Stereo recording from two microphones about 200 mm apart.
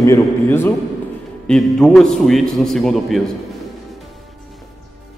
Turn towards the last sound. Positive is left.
turn(degrees=0)  # may be behind; listen again after turning